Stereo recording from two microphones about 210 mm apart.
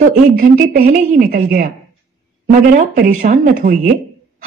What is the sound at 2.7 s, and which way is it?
A woman's voice, 40° right (ahead or behind).